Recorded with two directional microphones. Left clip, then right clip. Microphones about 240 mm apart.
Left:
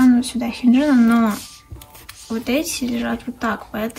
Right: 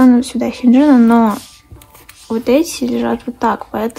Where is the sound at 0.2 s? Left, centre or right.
Right.